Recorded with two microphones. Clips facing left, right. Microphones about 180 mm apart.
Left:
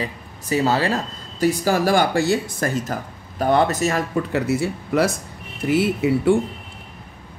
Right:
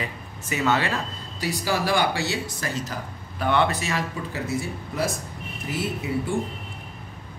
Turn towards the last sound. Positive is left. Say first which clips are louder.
# left 8 dB
turn(degrees=65)  # may be behind; listen again after turning